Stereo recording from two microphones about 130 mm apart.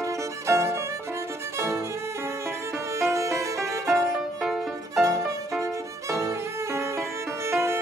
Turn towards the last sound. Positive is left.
turn(degrees=-20)  # may be behind; listen again after turning